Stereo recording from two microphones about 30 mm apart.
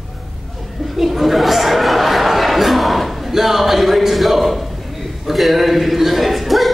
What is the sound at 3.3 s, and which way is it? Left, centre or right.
Speech, centre.